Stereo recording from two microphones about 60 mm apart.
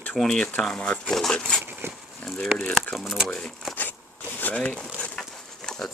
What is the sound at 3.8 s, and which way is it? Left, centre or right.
Zipper, left.